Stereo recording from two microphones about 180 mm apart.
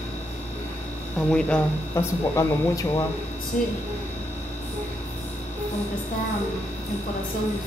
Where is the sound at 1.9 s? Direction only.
15° left (ahead or behind).